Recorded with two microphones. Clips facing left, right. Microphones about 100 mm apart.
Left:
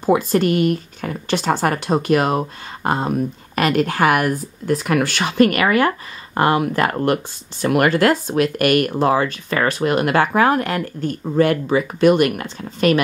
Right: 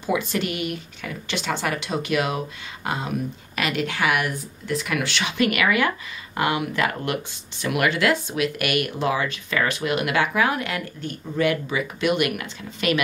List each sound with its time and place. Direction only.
0.0 s speech: 40° left (ahead or behind)